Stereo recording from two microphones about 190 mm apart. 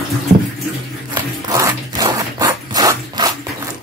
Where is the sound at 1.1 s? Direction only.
15° right (ahead or behind).